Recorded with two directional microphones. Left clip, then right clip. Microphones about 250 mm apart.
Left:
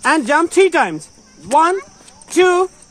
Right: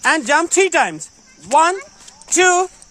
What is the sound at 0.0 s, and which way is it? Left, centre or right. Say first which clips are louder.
Speech: left 1 dB; right.